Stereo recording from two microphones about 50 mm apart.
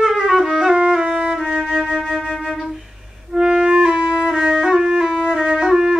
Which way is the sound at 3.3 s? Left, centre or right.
Centre.